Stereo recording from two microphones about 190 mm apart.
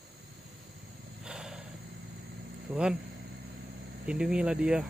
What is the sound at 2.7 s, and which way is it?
Speech, 10° right (ahead or behind).